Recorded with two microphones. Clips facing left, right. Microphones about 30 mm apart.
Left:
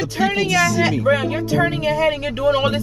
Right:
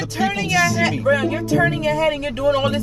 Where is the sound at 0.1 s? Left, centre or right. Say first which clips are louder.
Left 2 dB; centre.